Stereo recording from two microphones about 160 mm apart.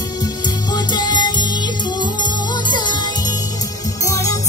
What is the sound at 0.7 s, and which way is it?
Music, 25° left (ahead or behind).